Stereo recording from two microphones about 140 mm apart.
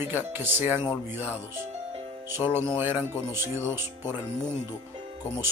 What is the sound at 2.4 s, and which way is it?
Speech, 20° right (ahead or behind).